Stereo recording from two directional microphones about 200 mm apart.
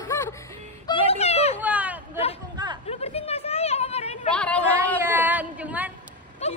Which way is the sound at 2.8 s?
30° left (ahead or behind).